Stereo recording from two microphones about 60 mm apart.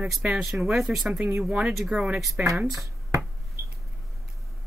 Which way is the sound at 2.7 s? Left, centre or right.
Right.